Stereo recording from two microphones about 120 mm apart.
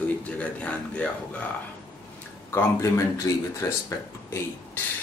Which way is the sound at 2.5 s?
20° left (ahead or behind).